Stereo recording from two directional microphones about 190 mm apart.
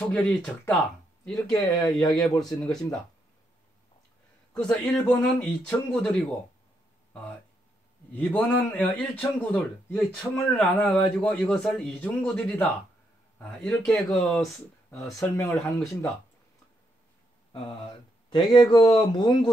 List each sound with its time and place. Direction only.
0.0 s a man's voice: 10° left (ahead or behind)
1.7 s speech: 20° left (ahead or behind)
2.0 s speech: centre (ahead or behind)
4.6 s speech: 5° left (ahead or behind)
8.1 s a man's voice: 10° left (ahead or behind)
17.5 s speech: 25° left (ahead or behind)